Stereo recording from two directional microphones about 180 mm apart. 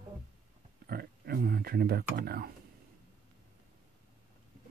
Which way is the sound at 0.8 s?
60° right (ahead or behind).